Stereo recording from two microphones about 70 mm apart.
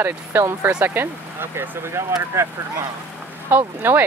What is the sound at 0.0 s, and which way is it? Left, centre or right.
Speech, right.